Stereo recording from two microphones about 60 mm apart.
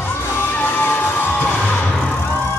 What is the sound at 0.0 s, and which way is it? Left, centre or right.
Music, left.